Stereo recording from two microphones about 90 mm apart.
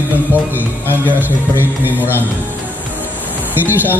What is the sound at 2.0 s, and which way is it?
Speech, 25° left (ahead or behind).